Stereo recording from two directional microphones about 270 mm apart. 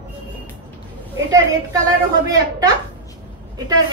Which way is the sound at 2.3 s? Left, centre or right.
Centre.